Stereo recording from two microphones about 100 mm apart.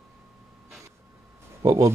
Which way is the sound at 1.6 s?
40° right (ahead or behind).